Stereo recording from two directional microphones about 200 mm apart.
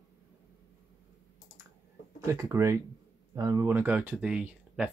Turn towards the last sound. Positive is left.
turn(degrees=-5)  # may be behind; listen again after turning